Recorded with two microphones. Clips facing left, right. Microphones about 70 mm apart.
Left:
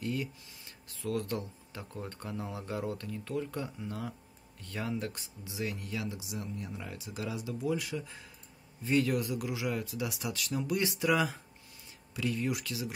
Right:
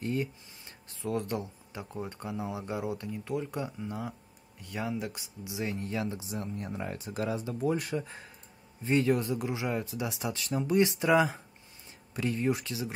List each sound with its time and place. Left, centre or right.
0.0 s speech: right; by 5.7 s centre
5.7 s speech: right
8.8 s speech: right